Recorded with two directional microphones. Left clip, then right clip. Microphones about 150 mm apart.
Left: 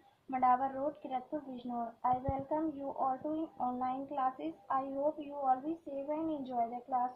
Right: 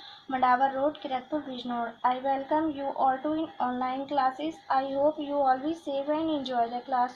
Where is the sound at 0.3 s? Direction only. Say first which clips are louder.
Right 6 dB; 20° right (ahead or behind).